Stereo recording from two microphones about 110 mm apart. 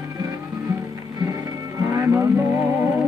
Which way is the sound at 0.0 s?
35° right (ahead or behind).